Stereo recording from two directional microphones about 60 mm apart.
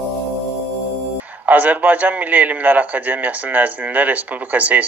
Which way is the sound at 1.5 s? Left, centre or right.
Right.